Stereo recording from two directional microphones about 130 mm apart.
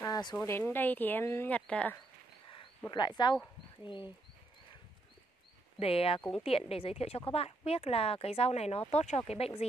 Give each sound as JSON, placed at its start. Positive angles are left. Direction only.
{"t": 0.0, "sound": "a sound", "side_deg": 30}
{"t": 0.5, "sound": "speech", "side_deg": 20}
{"t": 2.9, "sound": "speech", "side_deg": 35}
{"t": 5.8, "sound": "speech", "side_deg": 50}